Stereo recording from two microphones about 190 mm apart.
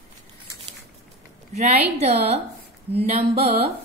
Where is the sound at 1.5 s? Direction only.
35° right (ahead or behind).